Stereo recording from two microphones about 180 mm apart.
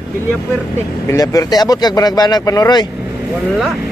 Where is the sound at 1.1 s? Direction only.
20° left (ahead or behind).